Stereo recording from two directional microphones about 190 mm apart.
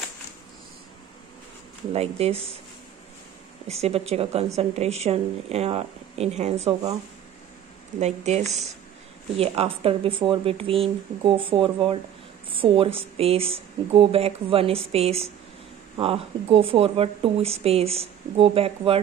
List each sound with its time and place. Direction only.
1.9 s speech: 35° right (ahead or behind)
3.6 s speech: 35° right (ahead or behind)
8.0 s speech: 35° right (ahead or behind)